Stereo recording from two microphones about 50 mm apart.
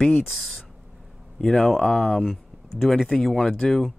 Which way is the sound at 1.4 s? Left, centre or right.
Centre.